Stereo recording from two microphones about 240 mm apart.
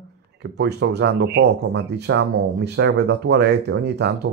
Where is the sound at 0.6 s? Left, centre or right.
Right.